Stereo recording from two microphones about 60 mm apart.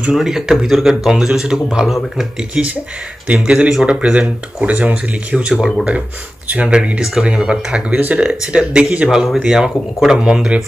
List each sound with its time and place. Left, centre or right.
0.1 s speech: centre
2.5 s speech: right